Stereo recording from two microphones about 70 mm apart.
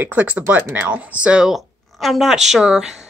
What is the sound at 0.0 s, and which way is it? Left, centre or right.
A woman's voice, right.